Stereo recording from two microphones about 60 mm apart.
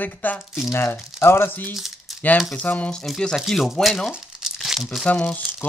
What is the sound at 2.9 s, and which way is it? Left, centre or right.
Speech, centre.